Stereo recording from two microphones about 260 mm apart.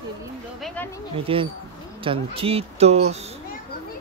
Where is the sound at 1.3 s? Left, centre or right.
Right.